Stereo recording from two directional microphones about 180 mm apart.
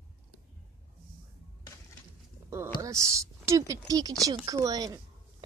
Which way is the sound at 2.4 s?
15° right (ahead or behind).